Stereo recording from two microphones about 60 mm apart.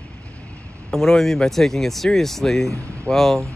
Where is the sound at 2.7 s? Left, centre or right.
Right.